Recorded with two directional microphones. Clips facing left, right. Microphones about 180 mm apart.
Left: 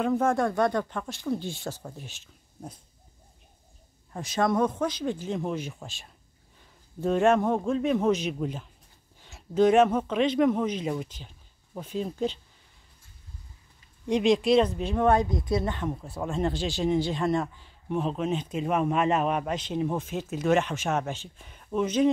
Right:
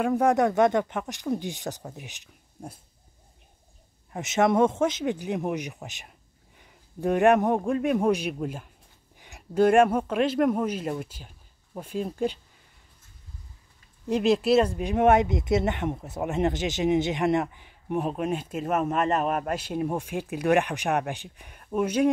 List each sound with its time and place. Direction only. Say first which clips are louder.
0.0 s speech: right 3 dB; 15° right (ahead or behind)
4.1 s speech: right 3 dB; 20° right (ahead or behind)
14.0 s speech: even; 5° right (ahead or behind)